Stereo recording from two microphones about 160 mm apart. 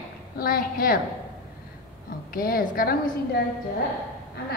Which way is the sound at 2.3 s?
65° left (ahead or behind).